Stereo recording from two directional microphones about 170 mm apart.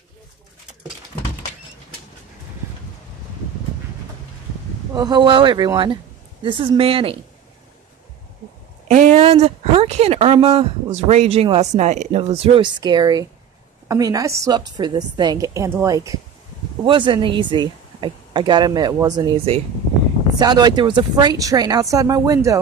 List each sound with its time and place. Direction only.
4.9 s speech: 25° right (ahead or behind)
8.8 s speech: 40° right (ahead or behind); by 16.2 s 20° right (ahead or behind)
16.8 s speech: 30° right (ahead or behind)